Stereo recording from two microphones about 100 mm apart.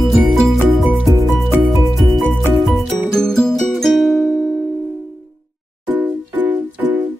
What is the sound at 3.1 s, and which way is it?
Music, 5° left (ahead or behind).